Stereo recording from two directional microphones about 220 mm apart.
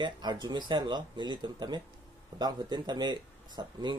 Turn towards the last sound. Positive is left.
turn(degrees=-20)  # may be behind; listen again after turning